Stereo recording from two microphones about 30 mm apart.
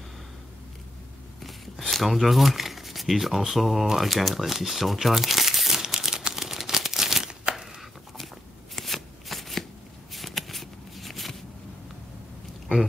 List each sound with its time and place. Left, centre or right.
1.4 s a sound: centre
2.0 s speech: centre
5.9 s crumpling: right
7.5 s crushing: right
8.7 s shuffling cards: centre